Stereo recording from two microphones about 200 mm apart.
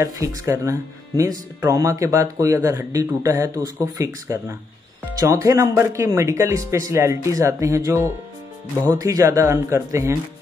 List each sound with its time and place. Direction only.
0.0 s speech: 15° right (ahead or behind)